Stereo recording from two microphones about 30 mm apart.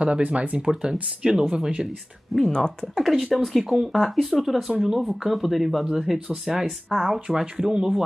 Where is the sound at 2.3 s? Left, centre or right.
Centre.